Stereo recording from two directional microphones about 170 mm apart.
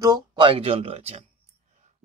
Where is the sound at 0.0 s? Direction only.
25° right (ahead or behind).